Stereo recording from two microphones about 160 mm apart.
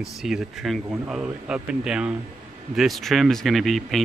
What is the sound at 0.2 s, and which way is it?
Speech, 5° right (ahead or behind).